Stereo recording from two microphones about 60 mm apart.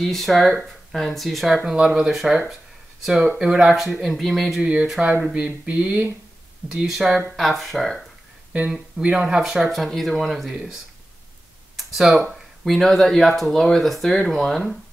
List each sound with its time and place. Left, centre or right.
0.0 s speech: centre
1.8 s speech: centre
3.3 s speech: centre
5.0 s speech: right
6.9 s speech: centre
9.1 s speech: centre
10.5 s speech: centre
11.7 s a sound: centre
12.6 s speech: centre